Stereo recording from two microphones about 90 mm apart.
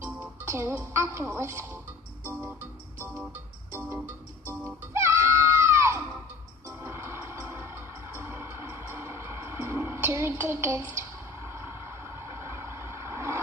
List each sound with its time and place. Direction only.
0.5 s speech: 25° right (ahead or behind)
2.2 s music: 25° right (ahead or behind)